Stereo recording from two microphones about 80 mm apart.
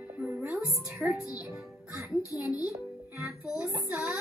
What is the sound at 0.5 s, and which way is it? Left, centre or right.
Music, centre.